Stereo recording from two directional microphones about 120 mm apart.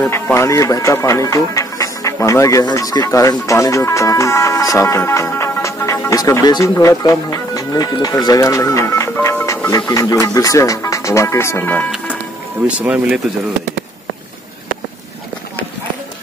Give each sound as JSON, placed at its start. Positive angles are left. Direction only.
{"t": 0.1, "sound": "speech", "side_deg": 25}
{"t": 12.6, "sound": "speech", "side_deg": -10}